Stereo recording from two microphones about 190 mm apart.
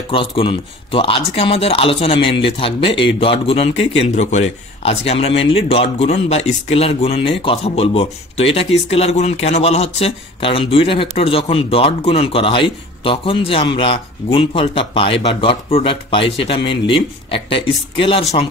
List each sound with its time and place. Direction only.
0.1 s speech: 25° left (ahead or behind)